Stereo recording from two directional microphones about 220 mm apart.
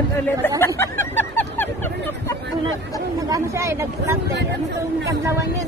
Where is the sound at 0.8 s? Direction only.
10° left (ahead or behind).